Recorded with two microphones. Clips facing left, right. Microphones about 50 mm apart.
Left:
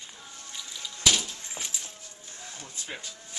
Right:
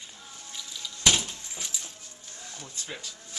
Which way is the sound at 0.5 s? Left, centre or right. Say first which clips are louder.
Even; centre.